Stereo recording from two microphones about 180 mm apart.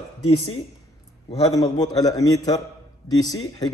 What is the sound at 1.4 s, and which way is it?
A man's voice, 20° left (ahead or behind).